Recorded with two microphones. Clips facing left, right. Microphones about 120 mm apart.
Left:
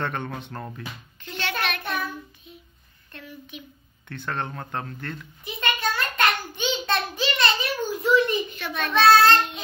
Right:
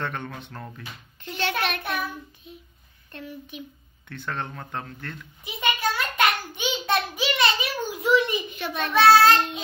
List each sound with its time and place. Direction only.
0.0 s speech: 5° left (ahead or behind)
1.8 s child singing: 5° right (ahead or behind)
3.1 s speech: 35° right (ahead or behind)
4.1 s speech: centre (ahead or behind)
5.4 s a sound: 10° right (ahead or behind)
8.7 s child singing: 15° right (ahead or behind)